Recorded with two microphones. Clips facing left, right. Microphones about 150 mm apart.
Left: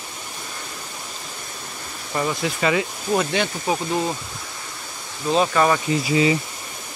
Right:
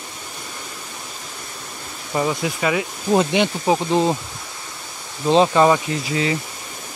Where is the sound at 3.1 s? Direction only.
20° right (ahead or behind).